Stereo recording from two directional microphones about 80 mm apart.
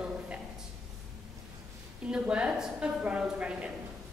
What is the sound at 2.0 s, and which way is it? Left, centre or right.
A woman's voice, centre.